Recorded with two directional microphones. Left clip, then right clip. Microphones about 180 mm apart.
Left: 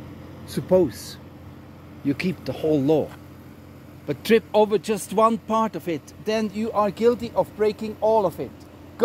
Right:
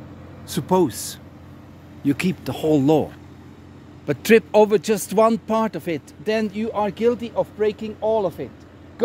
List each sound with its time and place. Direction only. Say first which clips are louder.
0.5 s speech: even; 30° right (ahead or behind)
2.0 s speech: right 3 dB; 50° right (ahead or behind); by 8.5 s centre (ahead or behind)